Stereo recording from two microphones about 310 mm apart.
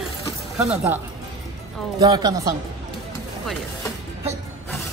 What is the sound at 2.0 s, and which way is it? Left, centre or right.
Speech, centre.